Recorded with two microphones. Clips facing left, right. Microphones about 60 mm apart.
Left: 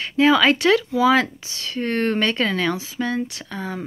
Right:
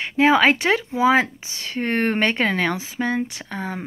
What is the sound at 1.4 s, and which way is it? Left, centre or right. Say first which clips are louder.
Speech: even; right.